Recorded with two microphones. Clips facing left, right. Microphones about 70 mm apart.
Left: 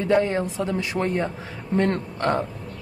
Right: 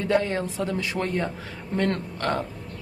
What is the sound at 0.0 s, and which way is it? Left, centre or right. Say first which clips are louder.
A woman's voice: left 3 dB; left.